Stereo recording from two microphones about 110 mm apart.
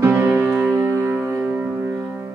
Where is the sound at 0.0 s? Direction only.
20° right (ahead or behind).